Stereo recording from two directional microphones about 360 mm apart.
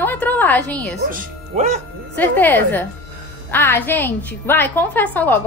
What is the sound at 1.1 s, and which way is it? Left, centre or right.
Speech, centre.